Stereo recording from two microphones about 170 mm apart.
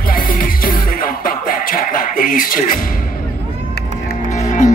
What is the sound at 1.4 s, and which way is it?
Music, 55° left (ahead or behind).